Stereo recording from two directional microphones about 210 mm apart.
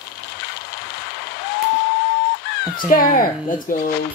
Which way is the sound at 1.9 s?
55° left (ahead or behind).